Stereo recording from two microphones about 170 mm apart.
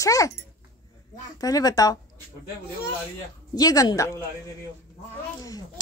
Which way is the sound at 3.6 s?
20° left (ahead or behind).